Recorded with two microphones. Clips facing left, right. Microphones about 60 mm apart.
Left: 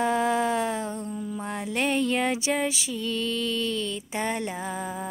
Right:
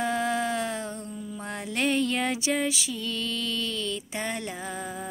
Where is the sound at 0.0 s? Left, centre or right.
Centre.